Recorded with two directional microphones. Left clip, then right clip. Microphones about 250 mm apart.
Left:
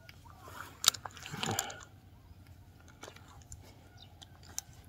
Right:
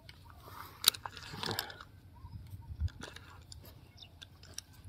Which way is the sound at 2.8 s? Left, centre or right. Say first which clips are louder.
Right 2 dB; centre.